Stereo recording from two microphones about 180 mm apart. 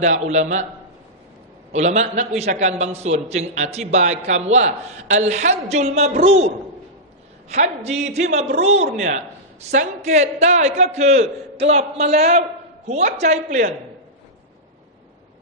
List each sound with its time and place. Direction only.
0.0 s a man's voice: 40° right (ahead or behind)
1.7 s a man's voice: 40° right (ahead or behind)